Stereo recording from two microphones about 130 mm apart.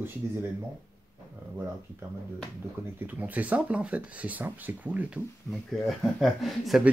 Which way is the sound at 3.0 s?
10° right (ahead or behind).